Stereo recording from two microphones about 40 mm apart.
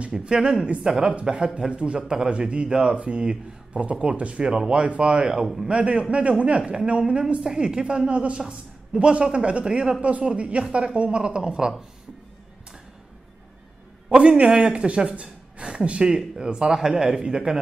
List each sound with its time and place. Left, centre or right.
0.1 s a man's voice: centre
0.8 s a man's voice: right
14.1 s a man's voice: right